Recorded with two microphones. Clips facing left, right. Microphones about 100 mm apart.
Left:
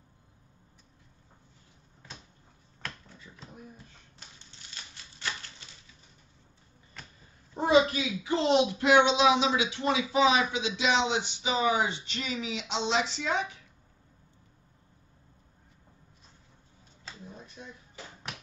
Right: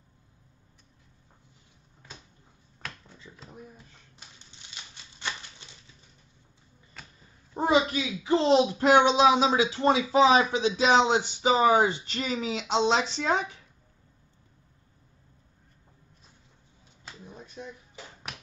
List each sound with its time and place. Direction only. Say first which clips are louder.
7.5 s speech: left 1 dB; 30° right (ahead or behind)
17.6 s speech: right 7 dB; 20° right (ahead or behind)